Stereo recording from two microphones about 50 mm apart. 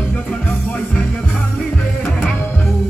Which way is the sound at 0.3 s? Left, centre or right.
Left.